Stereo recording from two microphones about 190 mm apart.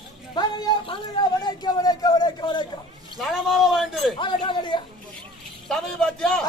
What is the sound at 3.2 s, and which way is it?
Speech, centre (ahead or behind).